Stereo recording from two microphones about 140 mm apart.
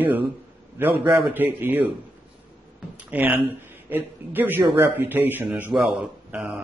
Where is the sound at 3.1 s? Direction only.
10° right (ahead or behind).